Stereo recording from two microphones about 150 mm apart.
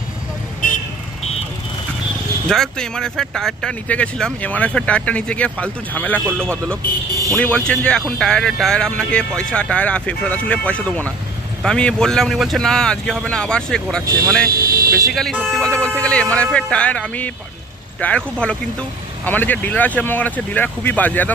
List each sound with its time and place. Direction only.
2.4 s speech: 5° left (ahead or behind)
14.5 s vehicle: 75° right (ahead or behind)
15.6 s speech: 5° left (ahead or behind)